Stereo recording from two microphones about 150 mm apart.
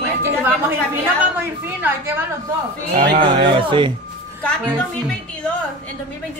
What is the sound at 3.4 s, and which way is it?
Speech, 35° right (ahead or behind).